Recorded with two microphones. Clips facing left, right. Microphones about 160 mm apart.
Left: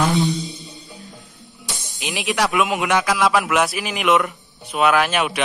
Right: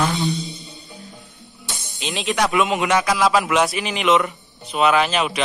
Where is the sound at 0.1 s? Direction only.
20° left (ahead or behind).